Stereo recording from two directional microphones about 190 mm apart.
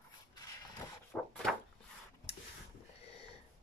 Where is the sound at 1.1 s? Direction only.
5° left (ahead or behind).